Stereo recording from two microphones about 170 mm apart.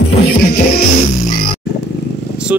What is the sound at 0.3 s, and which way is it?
Music, 60° left (ahead or behind).